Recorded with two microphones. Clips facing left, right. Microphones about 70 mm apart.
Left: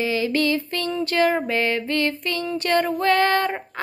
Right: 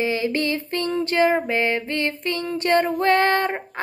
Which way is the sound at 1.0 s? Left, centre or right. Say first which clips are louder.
Even; right.